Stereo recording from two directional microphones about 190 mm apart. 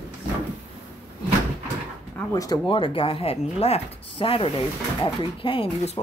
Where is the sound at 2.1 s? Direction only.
15° left (ahead or behind).